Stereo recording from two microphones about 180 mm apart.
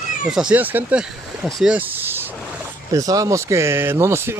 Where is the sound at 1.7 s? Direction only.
10° right (ahead or behind).